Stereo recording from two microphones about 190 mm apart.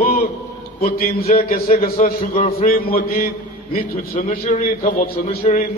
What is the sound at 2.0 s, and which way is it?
Music, 40° left (ahead or behind).